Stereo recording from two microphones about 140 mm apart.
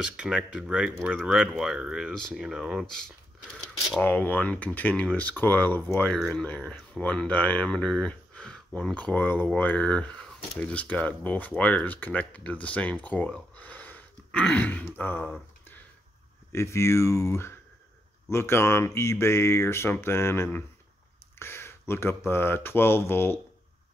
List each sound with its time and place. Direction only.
0.0 s speech: 5° right (ahead or behind)
4.0 s speech: 15° left (ahead or behind)
16.5 s speech: 20° left (ahead or behind)